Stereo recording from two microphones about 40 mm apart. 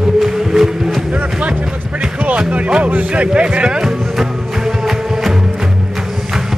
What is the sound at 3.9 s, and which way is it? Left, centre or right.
Music, centre.